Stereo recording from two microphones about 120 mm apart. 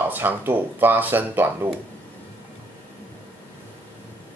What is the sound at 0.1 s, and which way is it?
Speech, 15° right (ahead or behind).